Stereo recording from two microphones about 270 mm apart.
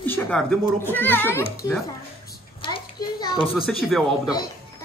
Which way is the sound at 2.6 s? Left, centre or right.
Centre.